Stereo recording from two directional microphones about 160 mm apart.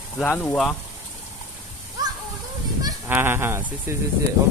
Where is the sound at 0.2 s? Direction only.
5° left (ahead or behind).